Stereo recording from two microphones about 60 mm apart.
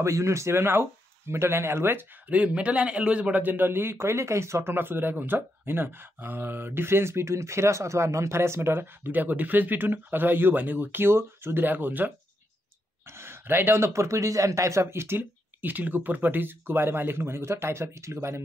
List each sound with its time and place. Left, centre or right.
0.0 s speech: right
2.2 s a man's voice: right
13.1 s speech: right
15.1 s a man's voice: right